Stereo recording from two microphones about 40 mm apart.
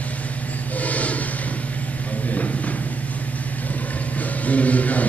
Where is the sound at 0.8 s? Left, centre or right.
Left.